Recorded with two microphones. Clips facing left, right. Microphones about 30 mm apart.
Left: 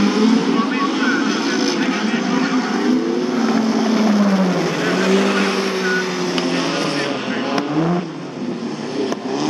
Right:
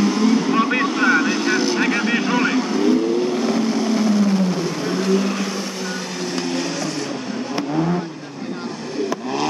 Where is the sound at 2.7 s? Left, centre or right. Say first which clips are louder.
Even; centre.